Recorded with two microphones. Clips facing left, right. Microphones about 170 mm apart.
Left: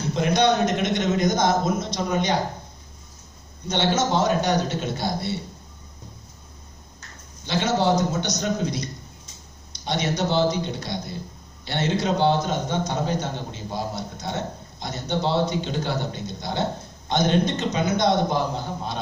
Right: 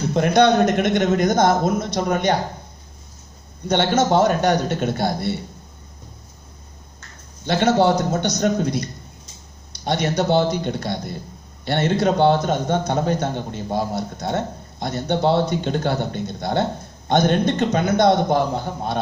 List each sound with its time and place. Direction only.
0.1 s a man's voice: 55° right (ahead or behind)
3.6 s a man's voice: 55° right (ahead or behind)
7.4 s a man's voice: 55° right (ahead or behind)